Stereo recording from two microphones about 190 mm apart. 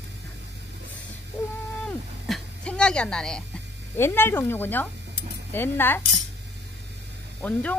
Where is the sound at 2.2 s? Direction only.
Centre (ahead or behind).